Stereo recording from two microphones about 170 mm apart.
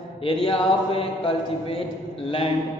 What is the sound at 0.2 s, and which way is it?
A man's voice, 30° left (ahead or behind).